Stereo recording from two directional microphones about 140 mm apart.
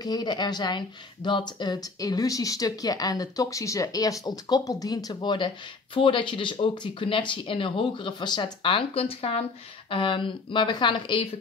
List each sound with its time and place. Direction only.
0.0 s speech: 30° left (ahead or behind)